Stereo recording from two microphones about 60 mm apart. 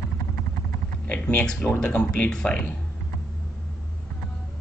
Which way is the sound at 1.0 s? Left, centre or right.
Left.